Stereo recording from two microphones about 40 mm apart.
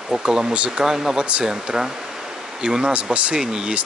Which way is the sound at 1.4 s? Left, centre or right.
Centre.